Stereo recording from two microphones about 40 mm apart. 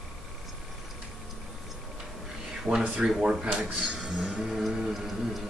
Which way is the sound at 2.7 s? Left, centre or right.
Centre.